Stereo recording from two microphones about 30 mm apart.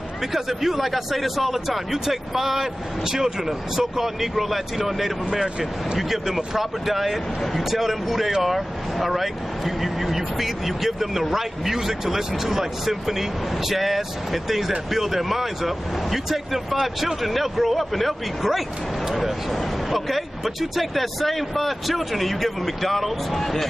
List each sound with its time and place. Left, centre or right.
0.3 s speech: centre
5.3 s speech: right
5.9 s speech: centre